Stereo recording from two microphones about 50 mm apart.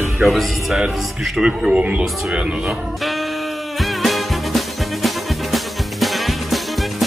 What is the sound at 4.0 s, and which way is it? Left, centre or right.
Music, centre.